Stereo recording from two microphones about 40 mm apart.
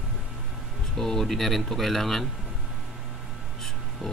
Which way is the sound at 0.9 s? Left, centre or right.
Centre.